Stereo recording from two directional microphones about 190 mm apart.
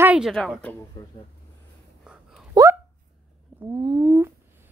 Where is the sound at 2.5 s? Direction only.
15° right (ahead or behind).